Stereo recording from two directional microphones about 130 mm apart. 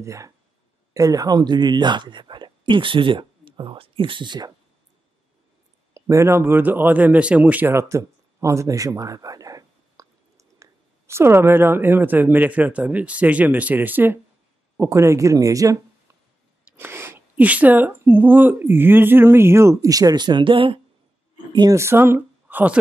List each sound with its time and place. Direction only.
0.0 s speech: 25° right (ahead or behind)
5.9 s speech: 20° right (ahead or behind)
21.7 s speech: 20° right (ahead or behind)